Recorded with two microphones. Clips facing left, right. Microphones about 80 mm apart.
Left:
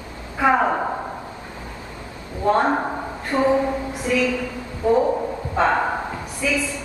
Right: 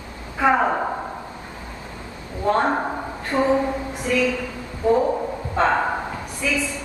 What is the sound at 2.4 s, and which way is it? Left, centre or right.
A man's voice, centre.